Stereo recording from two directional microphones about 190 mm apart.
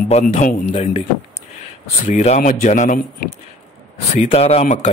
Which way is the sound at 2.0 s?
35° left (ahead or behind).